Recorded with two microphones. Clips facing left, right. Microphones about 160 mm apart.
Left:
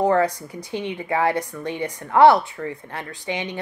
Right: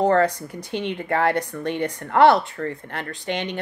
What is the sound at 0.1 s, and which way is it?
A woman's voice, 65° right (ahead or behind).